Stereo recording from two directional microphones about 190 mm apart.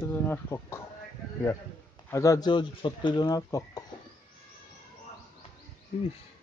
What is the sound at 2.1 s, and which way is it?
Speech, 15° left (ahead or behind).